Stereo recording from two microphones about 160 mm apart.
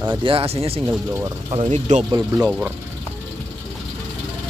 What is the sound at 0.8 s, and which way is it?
Speech, 15° right (ahead or behind).